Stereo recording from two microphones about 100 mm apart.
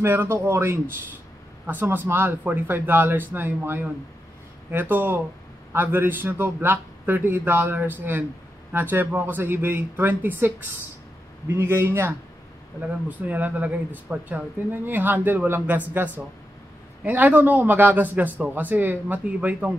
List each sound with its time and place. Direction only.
0.0 s a man's voice: 25° right (ahead or behind)
13.3 s a man's voice: 15° right (ahead or behind)